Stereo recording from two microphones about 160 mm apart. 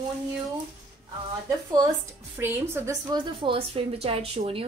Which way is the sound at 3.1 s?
30° right (ahead or behind).